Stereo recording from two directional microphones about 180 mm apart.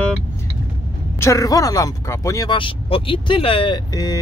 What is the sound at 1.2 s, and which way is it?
Speech, 20° left (ahead or behind).